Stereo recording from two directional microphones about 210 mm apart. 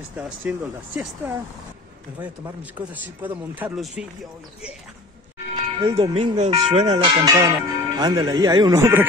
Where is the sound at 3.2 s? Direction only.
10° right (ahead or behind).